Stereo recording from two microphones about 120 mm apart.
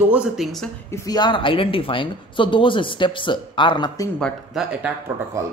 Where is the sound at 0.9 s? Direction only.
35° left (ahead or behind).